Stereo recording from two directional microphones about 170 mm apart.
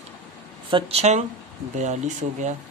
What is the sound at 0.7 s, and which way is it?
A man's voice, 35° right (ahead or behind).